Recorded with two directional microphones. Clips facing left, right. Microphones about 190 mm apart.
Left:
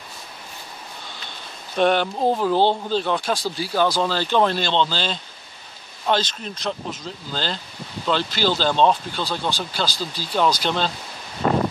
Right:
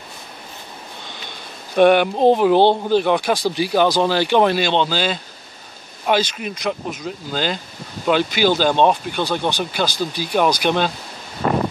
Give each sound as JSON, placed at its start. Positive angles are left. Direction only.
{"t": 1.8, "sound": "speech", "side_deg": -15}